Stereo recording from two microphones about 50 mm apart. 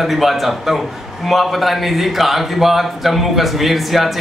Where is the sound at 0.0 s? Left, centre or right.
Centre.